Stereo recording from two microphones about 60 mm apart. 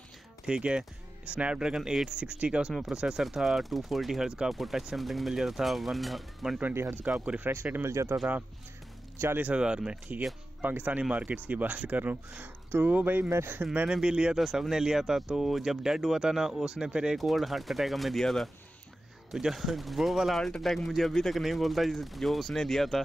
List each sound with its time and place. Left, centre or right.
0.5 s speech: centre
6.7 s speech: right
7.1 s speech: right
7.4 s speech: right
7.8 s speech: right
9.4 s speech: centre
13.3 s speech: right
13.8 s speech: centre
17.2 s speech: centre